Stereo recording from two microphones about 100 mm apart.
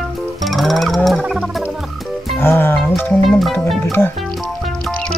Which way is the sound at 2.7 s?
Centre (ahead or behind).